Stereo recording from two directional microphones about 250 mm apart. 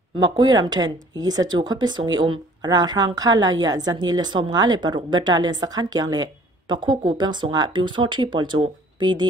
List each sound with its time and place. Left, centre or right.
0.2 s speech: centre